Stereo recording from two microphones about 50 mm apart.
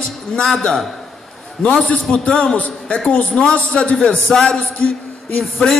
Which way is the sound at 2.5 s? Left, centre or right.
Left.